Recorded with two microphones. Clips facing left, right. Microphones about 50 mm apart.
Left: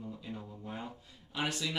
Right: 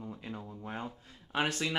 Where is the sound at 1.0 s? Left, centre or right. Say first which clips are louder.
Right 5 dB; right.